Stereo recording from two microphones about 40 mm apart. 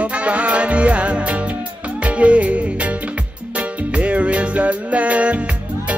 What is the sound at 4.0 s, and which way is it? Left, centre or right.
Music, right.